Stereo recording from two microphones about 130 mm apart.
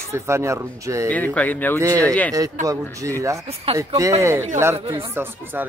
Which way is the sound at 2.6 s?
25° right (ahead or behind).